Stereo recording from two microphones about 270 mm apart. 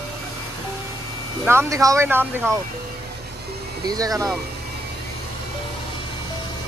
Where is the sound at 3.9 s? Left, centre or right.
Centre.